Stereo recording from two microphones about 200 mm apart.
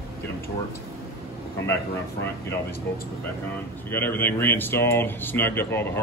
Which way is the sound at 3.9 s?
10° left (ahead or behind).